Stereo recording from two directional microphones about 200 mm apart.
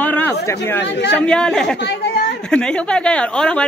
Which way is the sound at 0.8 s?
60° left (ahead or behind).